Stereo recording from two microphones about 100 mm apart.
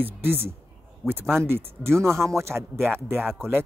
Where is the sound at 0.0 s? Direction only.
20° right (ahead or behind).